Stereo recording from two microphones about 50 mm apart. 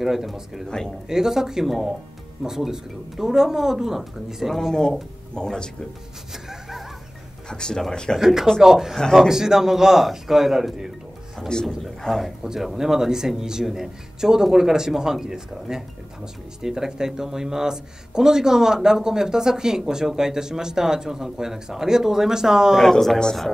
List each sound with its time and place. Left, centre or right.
0.0 s speech: centre
0.7 s speech: centre
1.0 s speech: centre
5.3 s speech: centre
7.4 s speech: centre
8.2 s speech: centre
22.8 s speech: centre